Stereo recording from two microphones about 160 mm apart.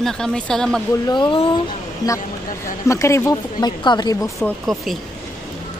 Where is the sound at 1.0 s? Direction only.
30° left (ahead or behind).